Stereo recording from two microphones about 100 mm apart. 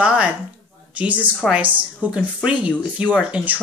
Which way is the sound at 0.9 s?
15° right (ahead or behind).